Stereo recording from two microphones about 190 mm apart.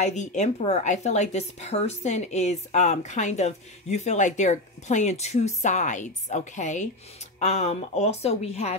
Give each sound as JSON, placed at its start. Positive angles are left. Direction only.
{"t": 0.0, "sound": "speech", "side_deg": 40}